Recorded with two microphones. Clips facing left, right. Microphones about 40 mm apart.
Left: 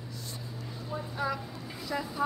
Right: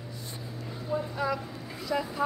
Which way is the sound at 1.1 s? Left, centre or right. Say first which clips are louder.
Left 1 dB; centre.